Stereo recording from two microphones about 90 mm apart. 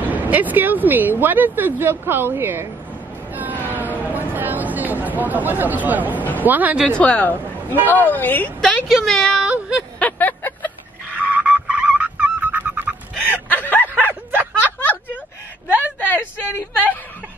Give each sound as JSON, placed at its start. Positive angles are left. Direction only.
{"t": 0.0, "sound": "a woman's voice", "side_deg": -20}
{"t": 3.3, "sound": "vehicle", "side_deg": -20}
{"t": 3.6, "sound": "a sound", "side_deg": -20}
{"t": 6.1, "sound": "a woman's voice", "side_deg": 20}
{"t": 6.4, "sound": "a woman's voice", "side_deg": -20}
{"t": 6.9, "sound": "a woman's voice", "side_deg": 15}
{"t": 8.5, "sound": "a woman's voice", "side_deg": 10}
{"t": 9.3, "sound": "a sound", "side_deg": -10}
{"t": 9.9, "sound": "a sound", "side_deg": 15}
{"t": 11.2, "sound": "frog", "side_deg": -15}
{"t": 13.5, "sound": "snicker", "side_deg": 20}
{"t": 14.6, "sound": "a sound", "side_deg": 20}